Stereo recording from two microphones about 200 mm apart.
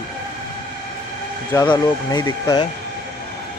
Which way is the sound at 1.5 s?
20° left (ahead or behind).